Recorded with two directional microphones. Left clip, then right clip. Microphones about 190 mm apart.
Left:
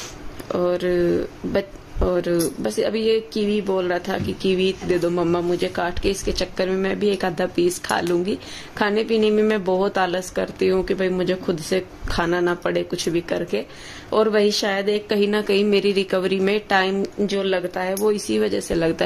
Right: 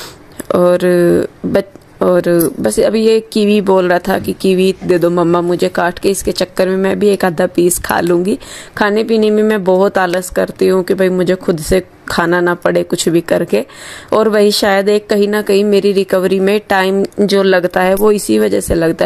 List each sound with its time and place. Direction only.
0.5 s speech: 40° right (ahead or behind)